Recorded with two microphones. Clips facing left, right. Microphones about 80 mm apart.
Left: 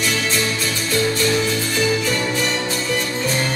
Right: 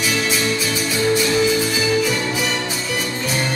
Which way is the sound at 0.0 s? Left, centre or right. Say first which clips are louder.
Right 1 dB; centre.